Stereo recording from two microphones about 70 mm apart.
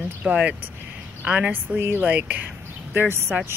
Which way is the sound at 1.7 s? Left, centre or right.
Right.